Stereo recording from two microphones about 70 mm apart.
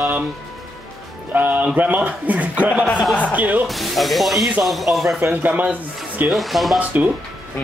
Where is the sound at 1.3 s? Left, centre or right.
Right.